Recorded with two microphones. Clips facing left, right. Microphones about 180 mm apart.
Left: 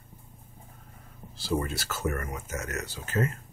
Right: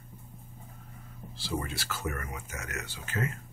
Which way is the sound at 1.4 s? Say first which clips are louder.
Left 5 dB; 45° left (ahead or behind).